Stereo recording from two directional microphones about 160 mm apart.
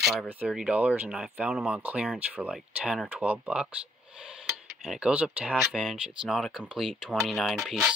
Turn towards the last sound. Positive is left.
turn(degrees=0)  # may be behind; listen again after turning